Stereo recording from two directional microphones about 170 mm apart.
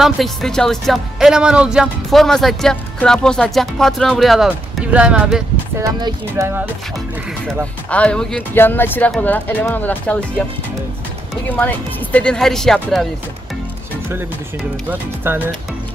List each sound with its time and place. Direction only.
0.0 s speech: centre (ahead or behind)
5.8 s speech: 20° right (ahead or behind)
7.9 s speech: 5° left (ahead or behind)
11.4 s speech: 10° left (ahead or behind)
14.9 s speech: 10° right (ahead or behind)